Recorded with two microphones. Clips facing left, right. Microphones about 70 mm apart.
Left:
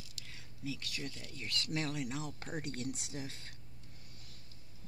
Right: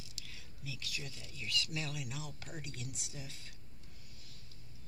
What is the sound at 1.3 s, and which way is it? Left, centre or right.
Speech, left.